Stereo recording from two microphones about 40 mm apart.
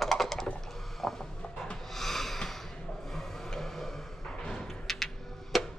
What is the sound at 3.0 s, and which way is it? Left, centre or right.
Vehicle, centre.